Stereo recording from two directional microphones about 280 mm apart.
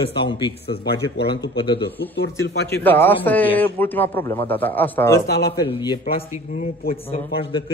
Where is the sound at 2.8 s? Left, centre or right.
Centre.